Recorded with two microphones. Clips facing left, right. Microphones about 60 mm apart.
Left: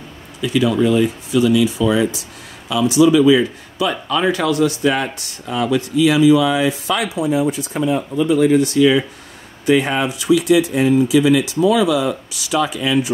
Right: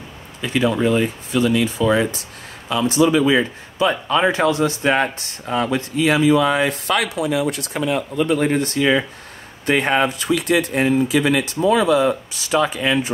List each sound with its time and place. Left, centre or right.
0.4 s speech: right